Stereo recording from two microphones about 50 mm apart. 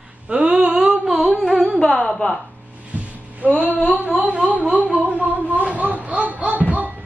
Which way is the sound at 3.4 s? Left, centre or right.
Right.